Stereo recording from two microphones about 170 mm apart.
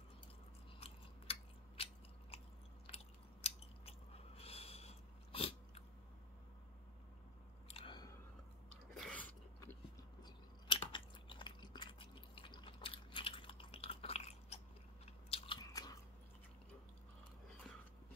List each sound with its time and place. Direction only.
0.7 s biting: 35° left (ahead or behind)
3.4 s biting: 35° left (ahead or behind)
7.6 s chewing: 35° left (ahead or behind)
8.9 s a sound: 5° left (ahead or behind)
10.2 s chewing: 30° left (ahead or behind)
15.2 s biting: 30° left (ahead or behind)